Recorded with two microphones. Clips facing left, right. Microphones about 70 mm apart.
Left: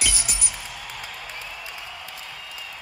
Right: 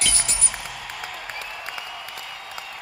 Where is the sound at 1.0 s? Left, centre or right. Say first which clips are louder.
Right 3 dB; right.